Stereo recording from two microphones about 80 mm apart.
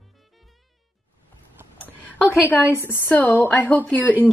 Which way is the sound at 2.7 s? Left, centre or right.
Left.